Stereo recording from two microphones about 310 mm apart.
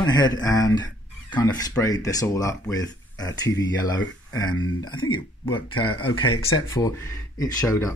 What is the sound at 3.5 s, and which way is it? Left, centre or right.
Speech, left.